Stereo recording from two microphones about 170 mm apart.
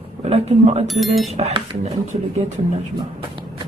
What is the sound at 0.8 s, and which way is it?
Speech, centre (ahead or behind).